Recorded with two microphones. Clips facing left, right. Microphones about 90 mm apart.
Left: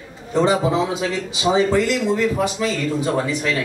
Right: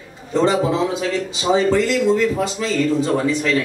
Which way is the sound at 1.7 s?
15° left (ahead or behind).